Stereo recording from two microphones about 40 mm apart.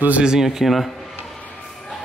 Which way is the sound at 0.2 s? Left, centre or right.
Centre.